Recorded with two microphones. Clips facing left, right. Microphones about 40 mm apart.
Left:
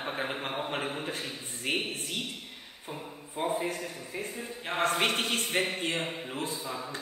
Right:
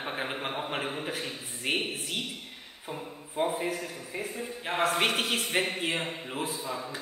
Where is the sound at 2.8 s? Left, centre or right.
Centre.